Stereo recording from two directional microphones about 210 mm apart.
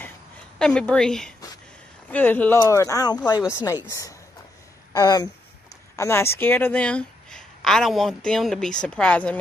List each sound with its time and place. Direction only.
0.6 s speech: 5° left (ahead or behind)